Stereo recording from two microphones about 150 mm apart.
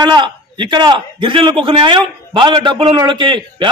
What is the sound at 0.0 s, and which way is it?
A man's voice, 30° right (ahead or behind).